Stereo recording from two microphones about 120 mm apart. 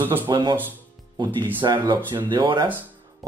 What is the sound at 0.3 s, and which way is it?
Speech, 40° right (ahead or behind).